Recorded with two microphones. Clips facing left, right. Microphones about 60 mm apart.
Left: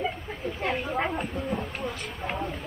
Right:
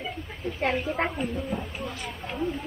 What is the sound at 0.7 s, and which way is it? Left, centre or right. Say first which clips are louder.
Speech: right 3 dB; centre.